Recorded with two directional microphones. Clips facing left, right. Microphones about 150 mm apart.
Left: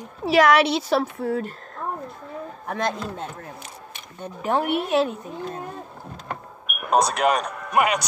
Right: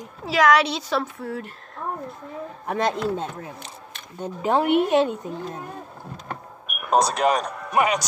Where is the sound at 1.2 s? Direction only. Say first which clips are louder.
Left 6 dB; 45° left (ahead or behind).